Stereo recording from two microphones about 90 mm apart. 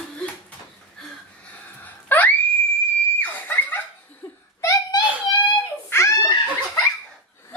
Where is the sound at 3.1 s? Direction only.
20° left (ahead or behind).